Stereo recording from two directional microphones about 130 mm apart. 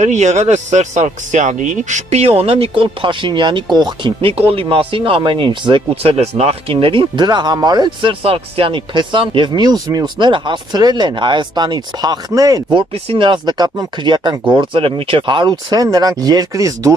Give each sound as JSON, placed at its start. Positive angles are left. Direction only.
{"t": 0.0, "sound": "speech", "side_deg": -65}
{"t": 6.1, "sound": "speech", "side_deg": -55}
{"t": 12.7, "sound": "speech", "side_deg": -40}